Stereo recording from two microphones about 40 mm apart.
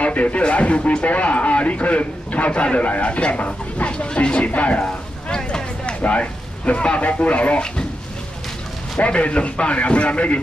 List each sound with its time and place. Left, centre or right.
0.0 s speech: left
5.3 s vehicle: centre
6.0 s speech: left
9.0 s speech: left